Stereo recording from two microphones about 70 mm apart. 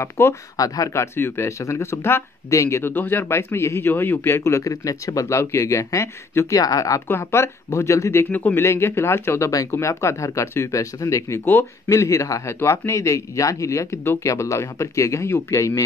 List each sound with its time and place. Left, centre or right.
0.0 s speech: left
0.9 s speech: left
2.8 s speech: left
3.9 s speech: left
4.4 s speech: left
6.6 s speech: left
7.1 s speech: left
8.3 s speech: left
8.5 s speech: left
11.9 s speech: left